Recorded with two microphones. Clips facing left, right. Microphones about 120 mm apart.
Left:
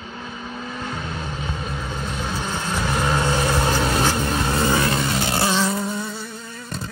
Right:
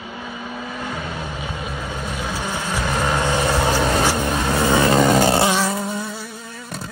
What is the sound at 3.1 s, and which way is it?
Vehicle, 15° right (ahead or behind).